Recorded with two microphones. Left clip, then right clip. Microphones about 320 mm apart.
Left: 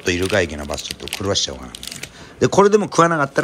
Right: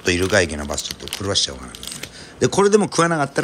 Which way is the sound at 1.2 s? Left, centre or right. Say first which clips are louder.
Even; centre.